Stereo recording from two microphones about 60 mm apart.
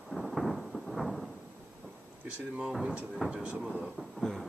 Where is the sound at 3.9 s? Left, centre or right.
Centre.